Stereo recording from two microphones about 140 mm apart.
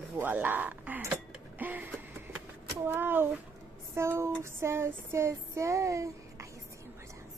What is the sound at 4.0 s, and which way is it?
Female singing, 20° right (ahead or behind).